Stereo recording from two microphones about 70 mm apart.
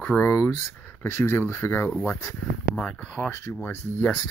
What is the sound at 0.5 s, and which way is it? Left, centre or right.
Speech, left.